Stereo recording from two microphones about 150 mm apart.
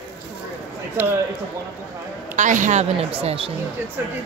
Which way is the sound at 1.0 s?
10° right (ahead or behind).